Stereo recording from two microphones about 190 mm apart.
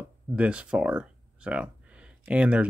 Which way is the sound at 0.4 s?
5° right (ahead or behind).